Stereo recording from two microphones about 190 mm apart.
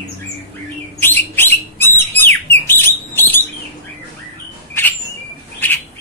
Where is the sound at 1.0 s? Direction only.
10° left (ahead or behind).